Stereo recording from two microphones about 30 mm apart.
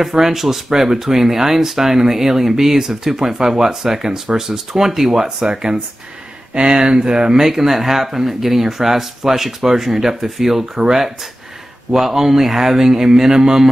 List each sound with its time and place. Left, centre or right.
0.1 s speech: centre
7.4 s speech: centre
11.9 s speech: centre